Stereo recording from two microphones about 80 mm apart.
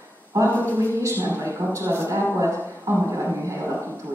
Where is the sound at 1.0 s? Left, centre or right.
Right.